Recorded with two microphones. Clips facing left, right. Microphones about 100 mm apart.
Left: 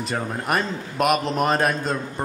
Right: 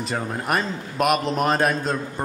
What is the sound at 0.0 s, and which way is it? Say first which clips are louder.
A man's voice: even; centre (ahead or behind).